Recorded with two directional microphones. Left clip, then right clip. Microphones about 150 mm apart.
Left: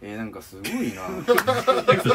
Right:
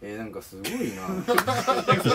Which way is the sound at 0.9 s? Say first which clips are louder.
Left 4 dB; 5° right (ahead or behind).